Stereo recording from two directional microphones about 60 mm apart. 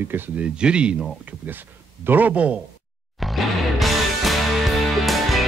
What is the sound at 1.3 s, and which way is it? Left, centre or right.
Speech, right.